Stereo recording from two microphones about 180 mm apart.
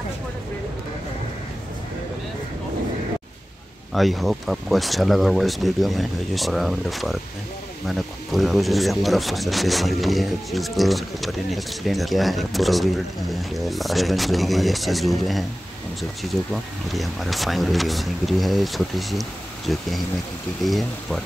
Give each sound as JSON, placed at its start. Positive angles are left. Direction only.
{"t": 3.9, "sound": "speech", "side_deg": 0}
{"t": 16.9, "sound": "speech", "side_deg": 0}